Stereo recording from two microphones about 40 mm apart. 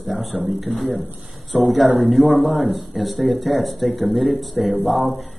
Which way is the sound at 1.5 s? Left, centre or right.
Left.